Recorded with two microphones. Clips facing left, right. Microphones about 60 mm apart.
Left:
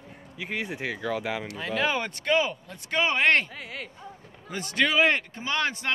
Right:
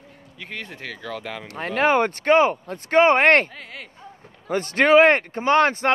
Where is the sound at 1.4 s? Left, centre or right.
Right.